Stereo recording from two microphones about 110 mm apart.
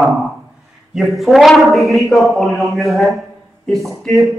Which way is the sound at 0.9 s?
Centre (ahead or behind).